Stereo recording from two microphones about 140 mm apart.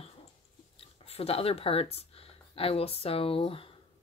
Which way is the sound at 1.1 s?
45° left (ahead or behind).